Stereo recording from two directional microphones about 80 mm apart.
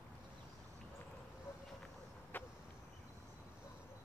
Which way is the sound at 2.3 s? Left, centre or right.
Left.